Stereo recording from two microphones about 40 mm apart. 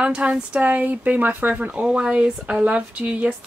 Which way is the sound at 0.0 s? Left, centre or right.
Right.